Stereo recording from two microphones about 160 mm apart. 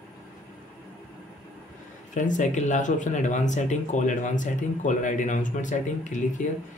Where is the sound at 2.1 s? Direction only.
50° left (ahead or behind).